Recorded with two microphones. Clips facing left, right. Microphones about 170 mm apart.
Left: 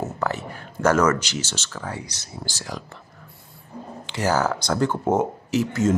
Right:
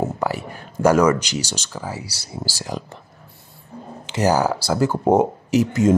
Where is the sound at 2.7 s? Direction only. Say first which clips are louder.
Right 8 dB; 20° right (ahead or behind).